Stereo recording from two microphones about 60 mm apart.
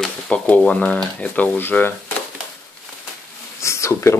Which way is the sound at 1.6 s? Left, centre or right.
Left.